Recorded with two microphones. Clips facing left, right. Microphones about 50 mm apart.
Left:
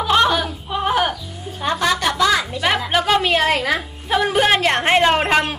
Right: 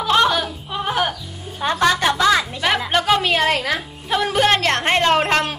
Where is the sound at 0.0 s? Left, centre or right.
Centre.